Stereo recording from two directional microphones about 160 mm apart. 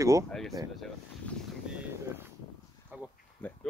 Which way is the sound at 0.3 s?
Centre (ahead or behind).